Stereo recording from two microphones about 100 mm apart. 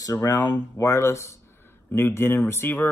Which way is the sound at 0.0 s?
35° left (ahead or behind).